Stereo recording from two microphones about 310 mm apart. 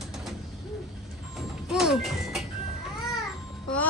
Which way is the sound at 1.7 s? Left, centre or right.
Centre.